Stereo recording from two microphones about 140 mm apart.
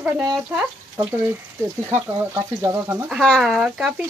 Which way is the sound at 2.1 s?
20° right (ahead or behind).